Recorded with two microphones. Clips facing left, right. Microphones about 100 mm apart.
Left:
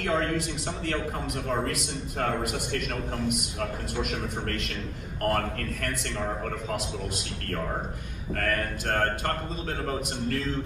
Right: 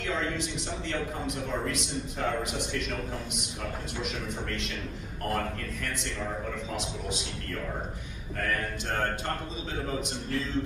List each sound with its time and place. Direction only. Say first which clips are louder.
0.0 s speech: left 4 dB; 55° left (ahead or behind)
2.1 s speech: left 3 dB; 55° left (ahead or behind)
8.4 s speech: left 2 dB; 55° left (ahead or behind)